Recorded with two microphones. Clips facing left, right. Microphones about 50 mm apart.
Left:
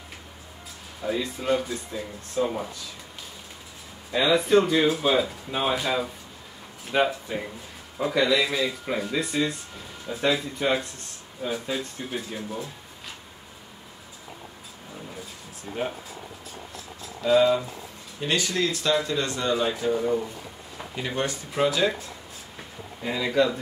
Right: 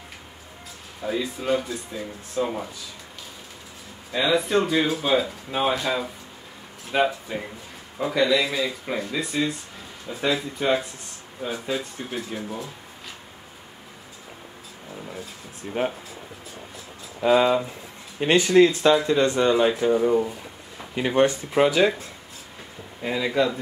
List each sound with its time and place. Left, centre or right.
1.0 s speech: centre
4.1 s speech: centre
15.7 s speech: right
17.2 s speech: right
23.0 s speech: centre